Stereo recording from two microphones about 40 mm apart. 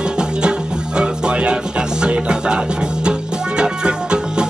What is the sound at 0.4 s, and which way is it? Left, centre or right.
Music, right.